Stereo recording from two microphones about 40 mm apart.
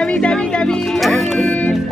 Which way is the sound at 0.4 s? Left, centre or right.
Left.